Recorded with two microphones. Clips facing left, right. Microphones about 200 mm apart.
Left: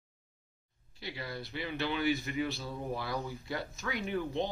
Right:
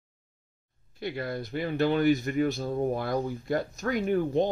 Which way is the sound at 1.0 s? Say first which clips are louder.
Right 9 dB; 50° right (ahead or behind).